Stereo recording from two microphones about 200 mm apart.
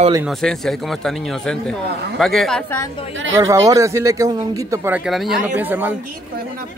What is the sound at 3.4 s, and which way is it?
Speech, 15° right (ahead or behind).